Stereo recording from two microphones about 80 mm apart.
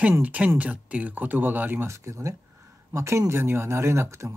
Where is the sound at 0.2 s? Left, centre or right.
Centre.